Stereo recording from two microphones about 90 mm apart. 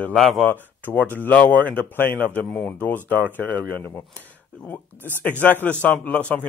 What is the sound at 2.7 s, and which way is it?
Speech, 20° left (ahead or behind).